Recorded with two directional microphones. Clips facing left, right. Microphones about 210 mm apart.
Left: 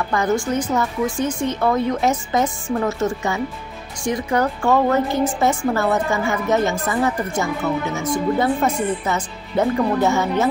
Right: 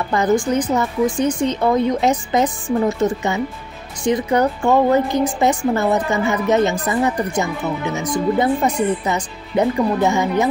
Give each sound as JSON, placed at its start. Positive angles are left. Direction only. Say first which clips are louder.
{"t": 0.1, "sound": "a woman's voice", "louder": "right 4 dB", "side_deg": -20}